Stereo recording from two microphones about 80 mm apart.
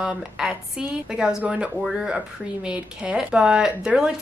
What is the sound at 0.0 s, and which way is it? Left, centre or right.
Speech, centre.